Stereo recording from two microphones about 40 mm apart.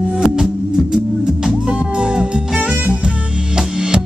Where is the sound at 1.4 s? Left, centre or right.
Right.